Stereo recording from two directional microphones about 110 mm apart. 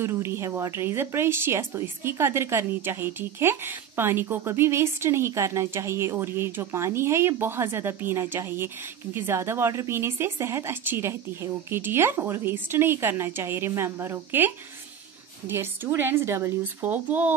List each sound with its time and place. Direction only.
0.0 s a woman's voice: 25° right (ahead or behind)